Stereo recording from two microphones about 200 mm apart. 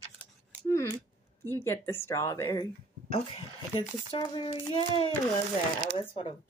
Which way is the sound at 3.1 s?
30° left (ahead or behind).